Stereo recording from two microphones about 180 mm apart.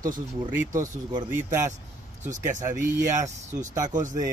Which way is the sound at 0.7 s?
15° right (ahead or behind).